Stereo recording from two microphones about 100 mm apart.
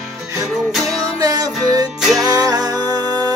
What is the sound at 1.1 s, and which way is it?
Music, 40° right (ahead or behind).